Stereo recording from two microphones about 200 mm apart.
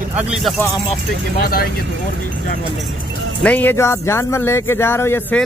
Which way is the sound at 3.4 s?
10° left (ahead or behind).